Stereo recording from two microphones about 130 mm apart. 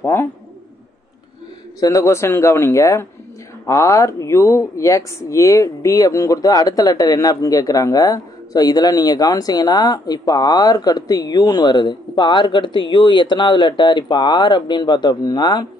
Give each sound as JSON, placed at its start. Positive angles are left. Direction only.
{"t": 0.0, "sound": "speech", "side_deg": 20}
{"t": 1.8, "sound": "speech", "side_deg": 25}